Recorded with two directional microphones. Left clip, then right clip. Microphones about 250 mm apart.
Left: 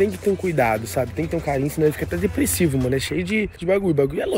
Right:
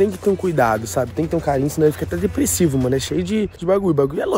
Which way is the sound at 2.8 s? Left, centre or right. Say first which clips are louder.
Right 2 dB; centre.